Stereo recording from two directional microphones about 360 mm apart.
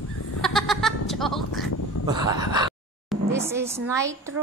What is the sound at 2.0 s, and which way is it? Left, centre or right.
Speech, centre.